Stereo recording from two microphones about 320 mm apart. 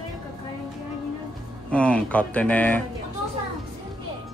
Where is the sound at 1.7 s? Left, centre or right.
Centre.